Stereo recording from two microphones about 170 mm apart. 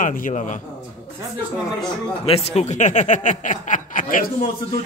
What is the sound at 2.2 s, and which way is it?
A man's voice, 35° left (ahead or behind).